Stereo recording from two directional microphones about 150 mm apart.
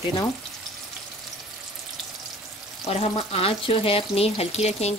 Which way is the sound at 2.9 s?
40° left (ahead or behind).